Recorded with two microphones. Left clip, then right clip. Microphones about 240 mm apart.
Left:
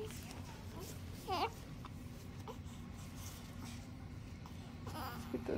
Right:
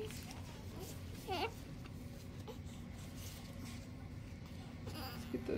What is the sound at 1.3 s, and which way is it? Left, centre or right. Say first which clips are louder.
Babbling: left 2 dB; centre.